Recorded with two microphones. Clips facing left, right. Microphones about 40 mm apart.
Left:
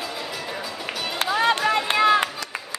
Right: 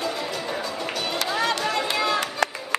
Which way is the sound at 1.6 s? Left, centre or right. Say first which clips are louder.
Left 4 dB; centre.